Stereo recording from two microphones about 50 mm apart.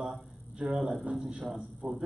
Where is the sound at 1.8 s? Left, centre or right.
Right.